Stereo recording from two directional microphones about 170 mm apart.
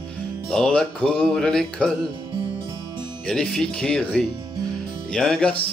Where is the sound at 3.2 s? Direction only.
5° left (ahead or behind).